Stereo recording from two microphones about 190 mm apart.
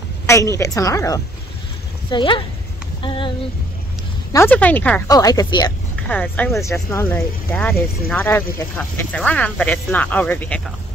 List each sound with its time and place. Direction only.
0.3 s speech: 15° left (ahead or behind)
3.0 s a sound: 25° left (ahead or behind)
4.3 s speech: 10° left (ahead or behind)
5.0 s speech: 20° left (ahead or behind)
6.0 s speech: 5° left (ahead or behind)